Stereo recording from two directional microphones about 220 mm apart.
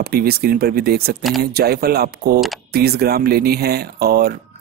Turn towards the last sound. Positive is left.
turn(degrees=-45)  # may be behind; listen again after turning